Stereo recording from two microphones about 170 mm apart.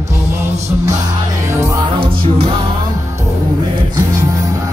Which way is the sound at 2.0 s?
35° right (ahead or behind).